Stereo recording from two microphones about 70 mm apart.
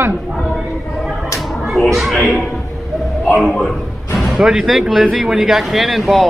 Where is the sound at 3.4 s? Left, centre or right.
Centre.